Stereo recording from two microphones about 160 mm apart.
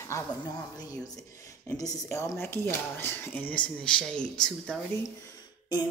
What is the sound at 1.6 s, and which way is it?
Speech, 20° left (ahead or behind).